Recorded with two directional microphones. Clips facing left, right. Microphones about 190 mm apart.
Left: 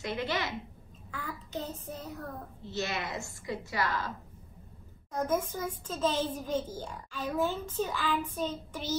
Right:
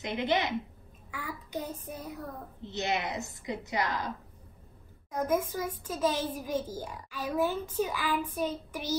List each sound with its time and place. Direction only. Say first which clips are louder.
0.0 s a woman's voice: right 4 dB; 20° right (ahead or behind)
5.1 s a child's voice: right 1 dB; 10° right (ahead or behind)